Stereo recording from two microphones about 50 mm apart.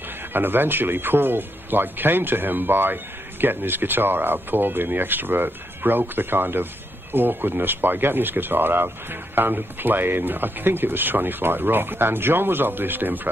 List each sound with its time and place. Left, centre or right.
0.3 s speech: right